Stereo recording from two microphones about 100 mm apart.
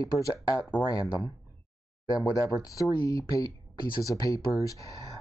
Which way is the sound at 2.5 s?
35° left (ahead or behind).